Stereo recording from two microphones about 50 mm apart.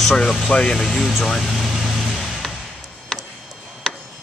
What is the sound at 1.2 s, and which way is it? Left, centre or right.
Vehicle, centre.